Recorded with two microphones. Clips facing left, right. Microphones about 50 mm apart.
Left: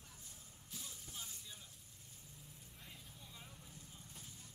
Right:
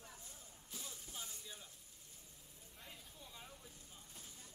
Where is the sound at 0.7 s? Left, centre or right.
Centre.